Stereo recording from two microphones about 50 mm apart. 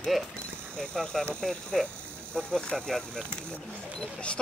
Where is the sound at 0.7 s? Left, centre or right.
Centre.